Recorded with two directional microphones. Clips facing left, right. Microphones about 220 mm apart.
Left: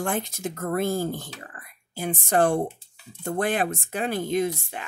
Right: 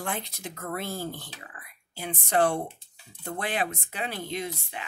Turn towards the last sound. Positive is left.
turn(degrees=50)  # may be behind; listen again after turning